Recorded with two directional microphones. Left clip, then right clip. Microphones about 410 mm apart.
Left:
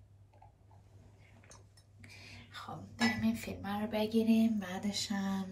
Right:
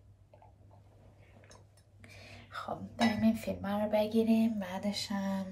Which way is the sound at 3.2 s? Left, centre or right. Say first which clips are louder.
Right 5 dB; centre.